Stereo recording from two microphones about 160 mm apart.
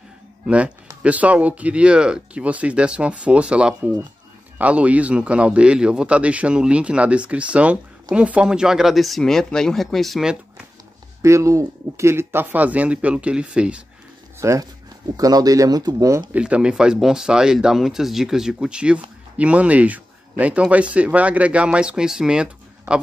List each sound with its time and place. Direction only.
1.0 s speech: 10° right (ahead or behind)
11.2 s speech: 20° right (ahead or behind)
14.4 s speech: 20° right (ahead or behind)
16.3 s speech: 5° right (ahead or behind)